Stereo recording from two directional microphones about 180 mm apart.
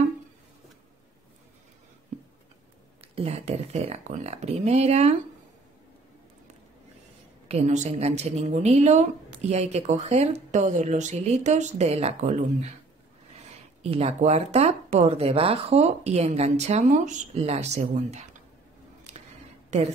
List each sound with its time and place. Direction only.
3.2 s speech: 35° right (ahead or behind)
7.4 s speech: 40° right (ahead or behind)
13.8 s speech: 35° right (ahead or behind)
19.1 s camera: 35° right (ahead or behind)